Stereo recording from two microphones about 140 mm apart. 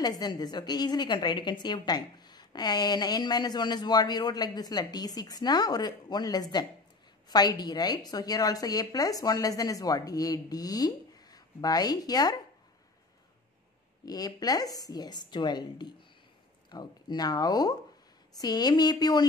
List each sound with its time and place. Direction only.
0.0 s a woman's voice: 30° left (ahead or behind)
14.0 s a woman's voice: 25° left (ahead or behind)